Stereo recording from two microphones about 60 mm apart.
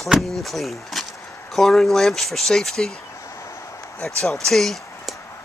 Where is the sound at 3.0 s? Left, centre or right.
Left.